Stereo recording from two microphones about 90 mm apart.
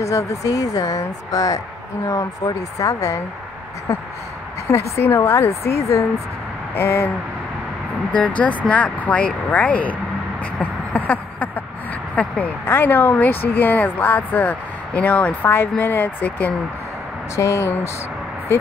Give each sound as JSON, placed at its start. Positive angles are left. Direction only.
{"t": 0.0, "sound": "speech", "side_deg": 35}
{"t": 4.6, "sound": "speech", "side_deg": 25}
{"t": 8.1, "sound": "speech", "side_deg": 15}
{"t": 10.6, "sound": "a sound", "side_deg": 20}
{"t": 12.2, "sound": "speech", "side_deg": 20}
{"t": 17.4, "sound": "speech", "side_deg": 30}